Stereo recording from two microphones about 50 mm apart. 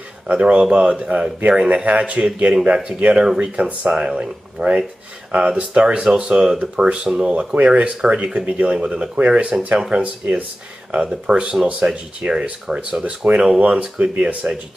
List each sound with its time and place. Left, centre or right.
0.3 s speech: right
1.9 s speech: right
7.3 s speech: right
9.4 s speech: right